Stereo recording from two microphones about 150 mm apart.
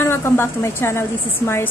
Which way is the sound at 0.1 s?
15° left (ahead or behind).